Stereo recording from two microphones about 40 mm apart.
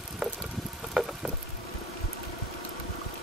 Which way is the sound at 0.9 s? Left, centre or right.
Centre.